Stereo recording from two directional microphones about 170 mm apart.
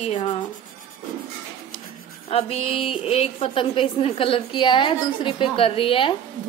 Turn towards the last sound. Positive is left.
turn(degrees=30)  # may be behind; listen again after turning